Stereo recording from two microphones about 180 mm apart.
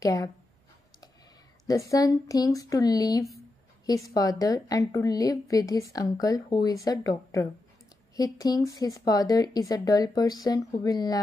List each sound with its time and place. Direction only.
0.0 s speech: 20° left (ahead or behind)
1.7 s a woman's voice: 20° left (ahead or behind)